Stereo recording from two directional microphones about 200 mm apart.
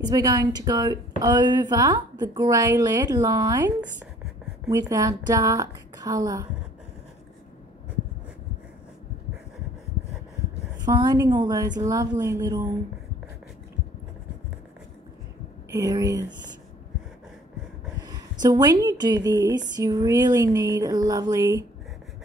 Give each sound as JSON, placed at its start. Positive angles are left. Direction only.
{"t": 0.0, "sound": "a woman's voice", "side_deg": -20}
{"t": 10.9, "sound": "a woman's voice", "side_deg": -20}
{"t": 15.7, "sound": "a woman's voice", "side_deg": -15}
{"t": 18.0, "sound": "a woman's voice", "side_deg": -20}